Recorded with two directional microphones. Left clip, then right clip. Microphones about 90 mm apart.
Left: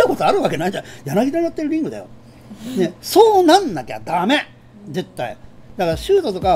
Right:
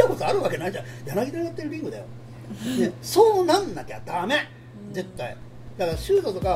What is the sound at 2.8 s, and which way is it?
Speech, 50° left (ahead or behind).